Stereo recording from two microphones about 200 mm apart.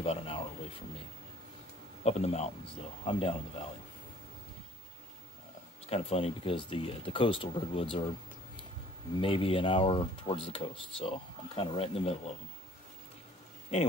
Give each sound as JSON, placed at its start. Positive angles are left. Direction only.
{"t": 0.0, "sound": "a sound", "side_deg": 30}
{"t": 2.0, "sound": "speech", "side_deg": 30}
{"t": 5.9, "sound": "speech", "side_deg": 30}
{"t": 9.2, "sound": "speech", "side_deg": 25}